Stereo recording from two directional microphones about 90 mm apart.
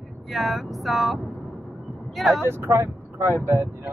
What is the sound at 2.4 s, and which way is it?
Speech, 25° right (ahead or behind).